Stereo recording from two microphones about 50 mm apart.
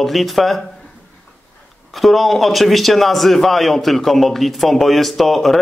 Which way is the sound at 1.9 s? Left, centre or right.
Centre.